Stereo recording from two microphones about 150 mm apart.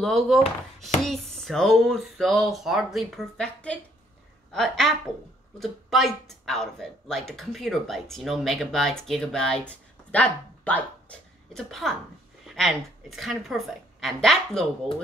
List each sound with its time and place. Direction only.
0.0 s speech: centre (ahead or behind)